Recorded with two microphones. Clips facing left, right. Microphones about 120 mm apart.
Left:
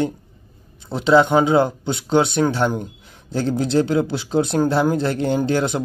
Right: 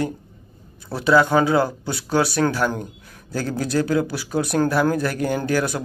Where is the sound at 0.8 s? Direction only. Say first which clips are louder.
Left 2 dB; 20° left (ahead or behind).